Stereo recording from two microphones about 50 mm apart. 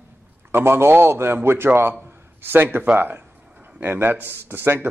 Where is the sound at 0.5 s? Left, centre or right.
Right.